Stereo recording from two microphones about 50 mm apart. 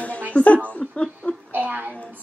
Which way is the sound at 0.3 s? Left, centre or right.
Left.